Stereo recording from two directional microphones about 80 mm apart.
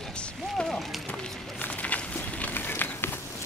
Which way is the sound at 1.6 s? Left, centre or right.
Centre.